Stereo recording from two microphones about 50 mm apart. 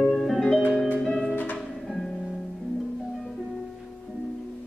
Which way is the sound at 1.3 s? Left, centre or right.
Left.